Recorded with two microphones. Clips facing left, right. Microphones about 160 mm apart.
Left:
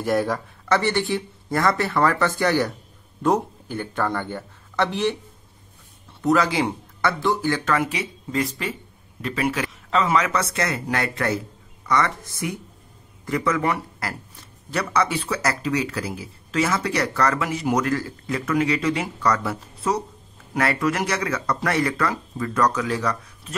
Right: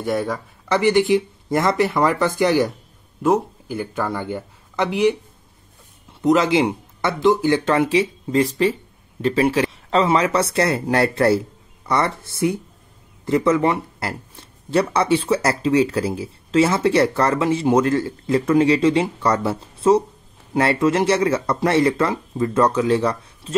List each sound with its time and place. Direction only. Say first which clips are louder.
0.0 s speech: even; centre (ahead or behind)
0.7 s speech: right 5 dB; 15° right (ahead or behind)
3.2 s speech: right 3 dB; 5° right (ahead or behind)
6.2 s speech: right 4 dB; 20° right (ahead or behind)